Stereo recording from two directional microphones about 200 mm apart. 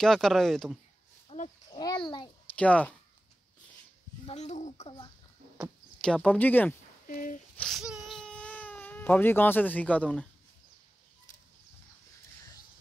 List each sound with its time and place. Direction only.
0.0 s speech: centre (ahead or behind)
1.3 s a sound: 30° left (ahead or behind)
1.7 s a child's voice: 20° left (ahead or behind)
2.5 s speech: 5° left (ahead or behind)
4.3 s a child's voice: 35° left (ahead or behind)
5.6 s speech: 5° left (ahead or behind)
7.1 s speech: 40° left (ahead or behind)
7.5 s baby cry: centre (ahead or behind)